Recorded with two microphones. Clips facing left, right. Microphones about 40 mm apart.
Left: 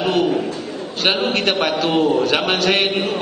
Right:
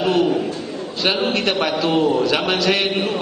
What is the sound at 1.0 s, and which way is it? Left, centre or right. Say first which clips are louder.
Speech: left 1 dB; left.